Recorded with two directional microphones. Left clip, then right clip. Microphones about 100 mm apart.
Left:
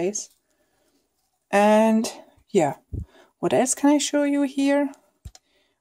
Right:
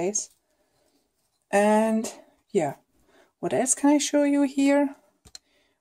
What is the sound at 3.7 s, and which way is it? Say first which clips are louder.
Speech: left 2 dB; 45° left (ahead or behind).